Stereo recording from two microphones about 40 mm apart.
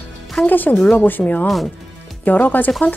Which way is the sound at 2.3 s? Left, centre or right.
Left.